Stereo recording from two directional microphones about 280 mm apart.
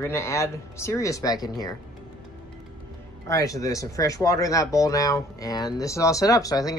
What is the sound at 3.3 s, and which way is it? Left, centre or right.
Speech, centre.